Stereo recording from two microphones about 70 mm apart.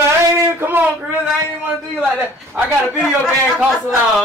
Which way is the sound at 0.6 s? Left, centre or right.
Right.